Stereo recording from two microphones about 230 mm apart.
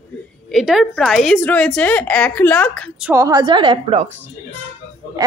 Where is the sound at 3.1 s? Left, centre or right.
Centre.